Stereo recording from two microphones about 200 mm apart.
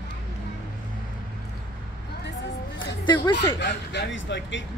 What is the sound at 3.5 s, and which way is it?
Speech, 60° left (ahead or behind).